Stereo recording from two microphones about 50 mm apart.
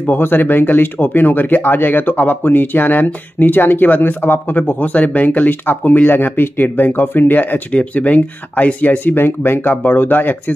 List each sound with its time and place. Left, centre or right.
0.0 s speech: left